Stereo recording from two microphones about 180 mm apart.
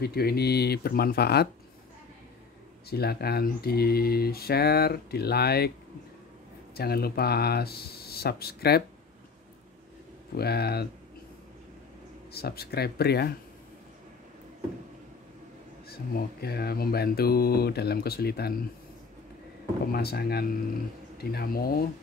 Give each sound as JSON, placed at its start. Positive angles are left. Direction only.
{"t": 0.0, "sound": "speech", "side_deg": 60}
{"t": 2.9, "sound": "speech", "side_deg": 60}
{"t": 6.7, "sound": "speech", "side_deg": 60}
{"t": 10.3, "sound": "speech", "side_deg": 65}
{"t": 12.3, "sound": "speech", "side_deg": 60}
{"t": 15.9, "sound": "speech", "side_deg": 60}
{"t": 19.9, "sound": "speech", "side_deg": 60}